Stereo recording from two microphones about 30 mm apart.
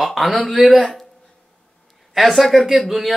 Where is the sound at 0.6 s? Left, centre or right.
Centre.